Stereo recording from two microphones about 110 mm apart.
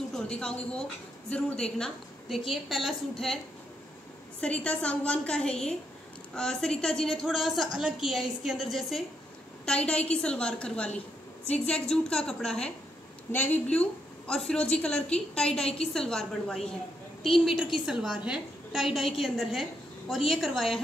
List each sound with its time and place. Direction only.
0.1 s a woman's voice: 5° left (ahead or behind)
4.4 s a woman's voice: 10° left (ahead or behind)
13.3 s a woman's voice: 15° left (ahead or behind)
17.8 s a woman's voice: 5° right (ahead or behind)